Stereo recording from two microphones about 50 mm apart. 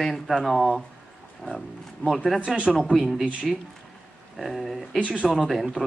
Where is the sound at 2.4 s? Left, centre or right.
Centre.